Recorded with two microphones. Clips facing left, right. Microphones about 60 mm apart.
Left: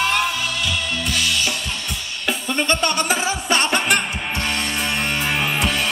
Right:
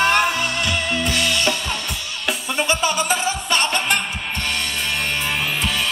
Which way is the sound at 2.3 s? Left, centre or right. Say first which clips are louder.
Left 1 dB; centre.